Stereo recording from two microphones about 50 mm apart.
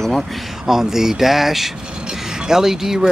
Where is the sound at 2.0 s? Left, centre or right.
Centre.